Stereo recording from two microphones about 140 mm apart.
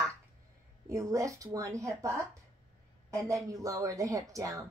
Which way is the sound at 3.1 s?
20° right (ahead or behind).